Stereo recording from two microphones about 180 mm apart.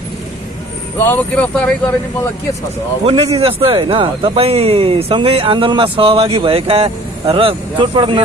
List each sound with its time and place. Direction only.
1.0 s speech: 10° left (ahead or behind)
3.1 s speech: 35° right (ahead or behind)